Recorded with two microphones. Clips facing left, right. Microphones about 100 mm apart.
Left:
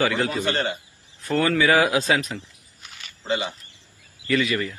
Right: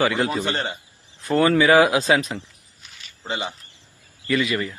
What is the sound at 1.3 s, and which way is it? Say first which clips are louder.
Speech: right 4 dB; 30° right (ahead or behind).